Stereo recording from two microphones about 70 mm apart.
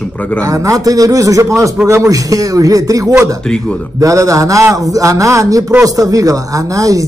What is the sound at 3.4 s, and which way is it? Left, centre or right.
Speech, centre.